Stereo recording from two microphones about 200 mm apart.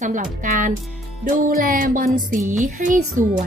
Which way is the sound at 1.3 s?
40° right (ahead or behind).